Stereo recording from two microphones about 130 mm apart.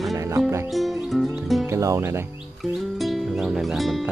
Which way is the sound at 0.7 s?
Centre (ahead or behind).